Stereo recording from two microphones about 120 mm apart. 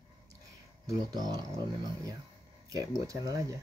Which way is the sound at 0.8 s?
35° right (ahead or behind).